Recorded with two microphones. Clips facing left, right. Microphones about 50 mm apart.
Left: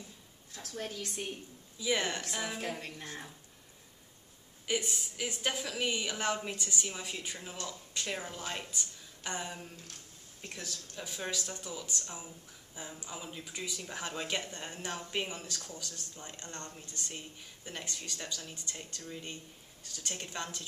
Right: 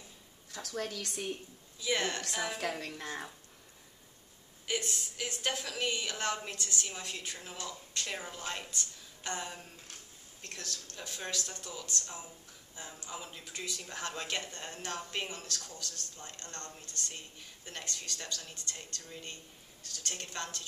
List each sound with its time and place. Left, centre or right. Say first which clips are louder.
0.5 s a woman's voice: right 3 dB; right
1.8 s a woman's voice: left 1 dB; centre
4.6 s a woman's voice: left 2 dB; centre